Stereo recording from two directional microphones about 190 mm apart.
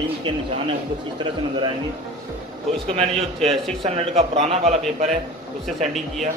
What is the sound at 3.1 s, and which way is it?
A man's voice, 30° right (ahead or behind).